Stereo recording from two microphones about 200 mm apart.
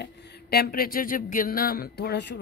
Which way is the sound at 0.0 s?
60° left (ahead or behind).